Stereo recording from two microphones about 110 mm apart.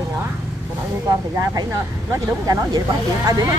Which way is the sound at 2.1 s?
30° right (ahead or behind).